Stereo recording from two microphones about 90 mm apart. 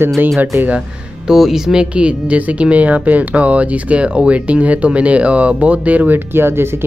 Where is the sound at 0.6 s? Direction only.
10° right (ahead or behind).